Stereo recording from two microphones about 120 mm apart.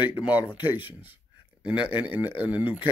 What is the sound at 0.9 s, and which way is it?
Speech, 15° right (ahead or behind).